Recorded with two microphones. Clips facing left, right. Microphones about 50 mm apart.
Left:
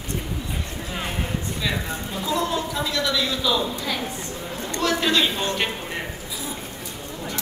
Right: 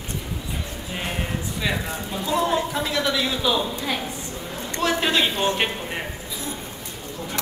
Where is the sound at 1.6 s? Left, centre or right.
Centre.